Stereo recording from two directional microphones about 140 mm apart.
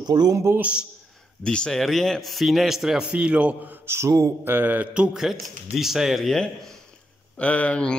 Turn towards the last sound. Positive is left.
turn(degrees=10)  # may be behind; listen again after turning